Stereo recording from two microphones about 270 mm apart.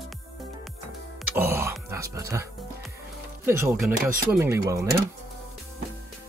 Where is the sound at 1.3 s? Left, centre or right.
Centre.